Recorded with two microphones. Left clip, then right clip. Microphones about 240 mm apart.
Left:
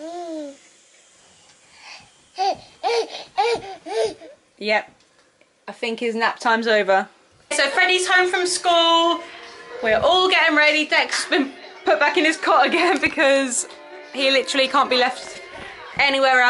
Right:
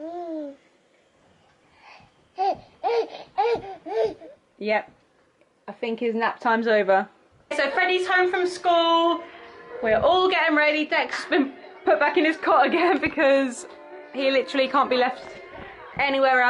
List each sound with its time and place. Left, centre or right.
0.0 s babbling: right
2.4 s babbling: centre
3.5 s a sound: centre
5.8 s a woman's voice: centre